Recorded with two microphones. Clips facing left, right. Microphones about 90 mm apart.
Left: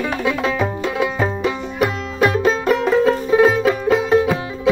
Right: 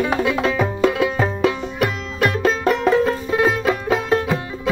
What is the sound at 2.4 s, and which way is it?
Music, centre (ahead or behind).